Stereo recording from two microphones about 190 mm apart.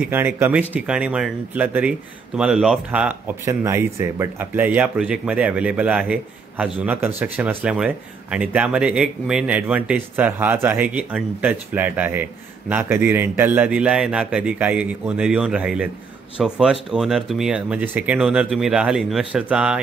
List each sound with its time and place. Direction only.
0.0 s speech: 10° right (ahead or behind)